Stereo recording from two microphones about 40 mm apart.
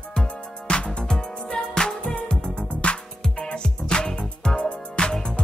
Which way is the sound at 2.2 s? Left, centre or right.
Left.